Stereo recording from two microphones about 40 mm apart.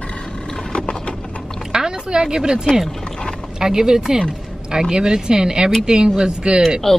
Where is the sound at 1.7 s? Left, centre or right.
Centre.